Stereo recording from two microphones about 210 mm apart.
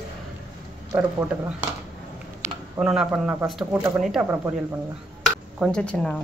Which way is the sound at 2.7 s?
5° right (ahead or behind).